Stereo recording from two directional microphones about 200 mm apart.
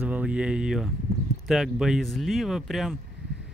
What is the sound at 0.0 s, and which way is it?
Speech, 5° right (ahead or behind).